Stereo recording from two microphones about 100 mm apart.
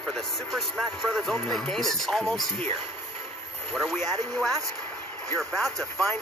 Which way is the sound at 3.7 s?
Centre (ahead or behind).